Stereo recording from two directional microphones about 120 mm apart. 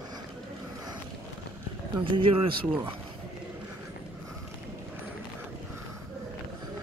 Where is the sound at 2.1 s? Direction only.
45° right (ahead or behind).